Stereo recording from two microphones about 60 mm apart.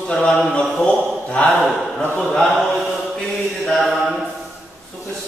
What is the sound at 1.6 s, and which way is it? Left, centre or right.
A man's voice, centre.